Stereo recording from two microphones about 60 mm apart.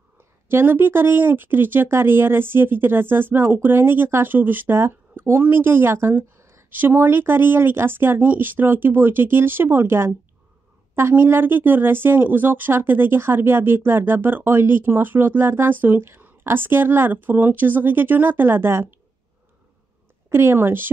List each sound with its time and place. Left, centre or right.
0.5 s speech: right
6.7 s speech: right
20.2 s speech: right